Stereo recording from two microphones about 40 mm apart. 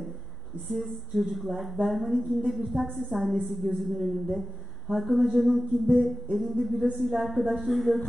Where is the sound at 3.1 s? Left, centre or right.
Centre.